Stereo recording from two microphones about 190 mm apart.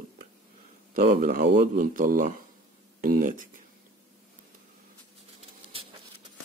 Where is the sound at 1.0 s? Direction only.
45° right (ahead or behind).